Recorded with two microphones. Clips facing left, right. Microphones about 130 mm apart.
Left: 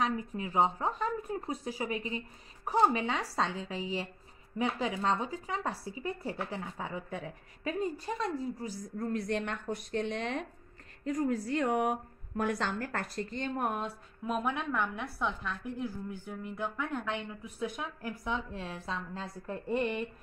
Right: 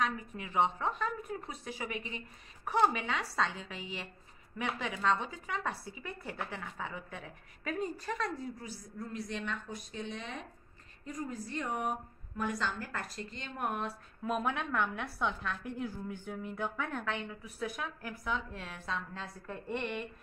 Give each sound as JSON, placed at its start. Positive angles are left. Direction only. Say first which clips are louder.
{"t": 0.0, "sound": "speech", "louder": "left 3 dB", "side_deg": 35}
{"t": 8.6, "sound": "a woman's voice", "louder": "left 7 dB", "side_deg": 50}
{"t": 11.2, "sound": "a woman's voice", "louder": "left 8 dB", "side_deg": 80}
{"t": 13.6, "sound": "speech", "louder": "even", "side_deg": 35}
{"t": 14.2, "sound": "a woman's voice", "louder": "left 1 dB", "side_deg": 10}